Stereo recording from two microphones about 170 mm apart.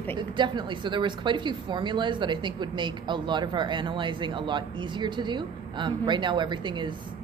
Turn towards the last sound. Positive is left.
turn(degrees=-25)  # may be behind; listen again after turning